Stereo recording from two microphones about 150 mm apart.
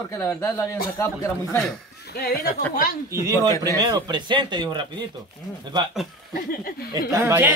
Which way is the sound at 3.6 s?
25° right (ahead or behind).